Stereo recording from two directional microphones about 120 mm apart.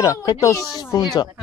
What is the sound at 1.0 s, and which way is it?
Speech, 35° left (ahead or behind).